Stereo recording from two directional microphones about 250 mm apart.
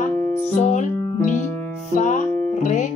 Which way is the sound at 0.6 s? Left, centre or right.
Left.